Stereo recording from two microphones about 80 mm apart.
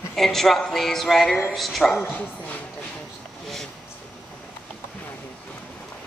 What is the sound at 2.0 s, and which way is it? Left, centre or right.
Speech, left.